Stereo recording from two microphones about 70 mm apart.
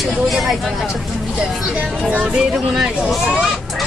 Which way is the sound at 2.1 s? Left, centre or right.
Centre.